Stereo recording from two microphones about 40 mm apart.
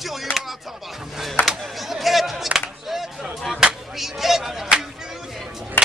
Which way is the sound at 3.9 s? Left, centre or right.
Centre.